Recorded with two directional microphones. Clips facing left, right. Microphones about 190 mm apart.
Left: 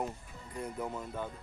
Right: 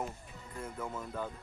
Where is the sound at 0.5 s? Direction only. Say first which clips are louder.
Left 3 dB; 15° left (ahead or behind).